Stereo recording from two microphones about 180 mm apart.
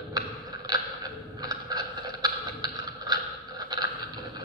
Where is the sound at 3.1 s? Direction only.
20° right (ahead or behind).